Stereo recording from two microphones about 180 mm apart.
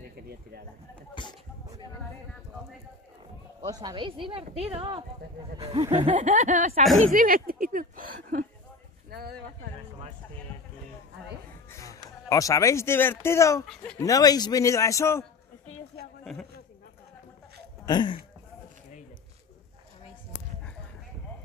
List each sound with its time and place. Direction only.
3.8 s a woman's voice: 25° right (ahead or behind); by 8.5 s 50° right (ahead or behind)
9.1 s speech: 60° right (ahead or behind)
11.7 s speech: 15° left (ahead or behind)
17.8 s speech: 25° left (ahead or behind)